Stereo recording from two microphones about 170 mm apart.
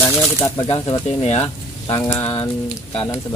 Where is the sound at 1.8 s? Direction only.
20° left (ahead or behind).